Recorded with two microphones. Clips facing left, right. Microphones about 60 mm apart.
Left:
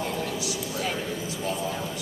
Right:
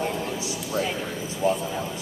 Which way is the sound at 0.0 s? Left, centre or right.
Right.